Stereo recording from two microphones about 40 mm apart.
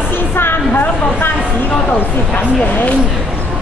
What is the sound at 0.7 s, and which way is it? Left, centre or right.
Speech, left.